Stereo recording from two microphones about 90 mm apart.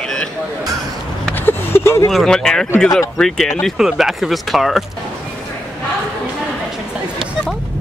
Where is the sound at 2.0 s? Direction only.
5° left (ahead or behind).